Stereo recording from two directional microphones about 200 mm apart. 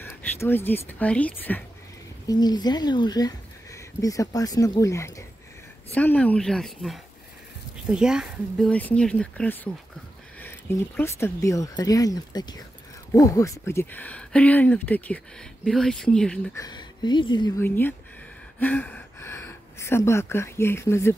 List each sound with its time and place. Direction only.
0.0 s speech: 10° left (ahead or behind)
2.2 s speech: 20° left (ahead or behind); by 16.3 s 5° left (ahead or behind)
16.5 s speech: 20° left (ahead or behind)